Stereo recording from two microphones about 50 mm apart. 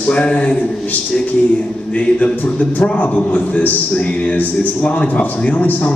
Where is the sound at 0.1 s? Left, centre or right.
Left.